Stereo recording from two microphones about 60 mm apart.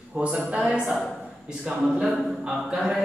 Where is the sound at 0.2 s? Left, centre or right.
Centre.